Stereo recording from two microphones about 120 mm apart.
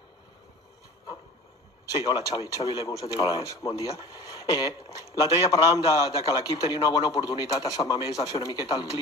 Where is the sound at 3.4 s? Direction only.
25° left (ahead or behind).